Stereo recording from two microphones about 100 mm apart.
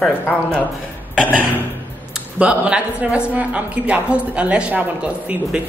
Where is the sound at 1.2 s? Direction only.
15° left (ahead or behind).